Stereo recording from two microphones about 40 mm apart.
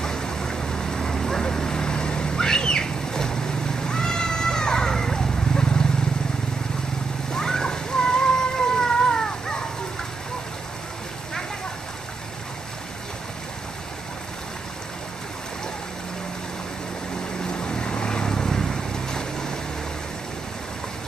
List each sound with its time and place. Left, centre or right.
0.0 s vehicle: centre
7.3 s a sound: centre
17.5 s boat: left